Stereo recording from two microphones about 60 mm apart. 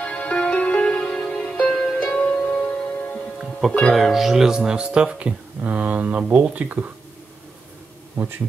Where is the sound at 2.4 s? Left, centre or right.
Left.